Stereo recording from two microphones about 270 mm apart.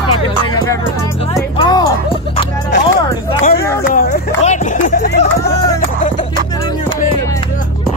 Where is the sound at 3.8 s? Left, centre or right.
Left.